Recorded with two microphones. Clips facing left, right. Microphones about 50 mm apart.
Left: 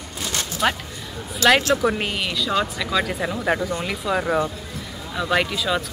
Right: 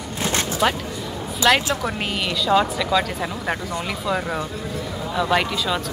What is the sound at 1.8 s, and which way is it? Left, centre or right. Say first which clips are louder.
Speech: left 3 dB; centre.